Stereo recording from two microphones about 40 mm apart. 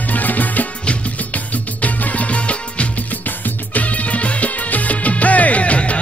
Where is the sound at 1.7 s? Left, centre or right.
Left.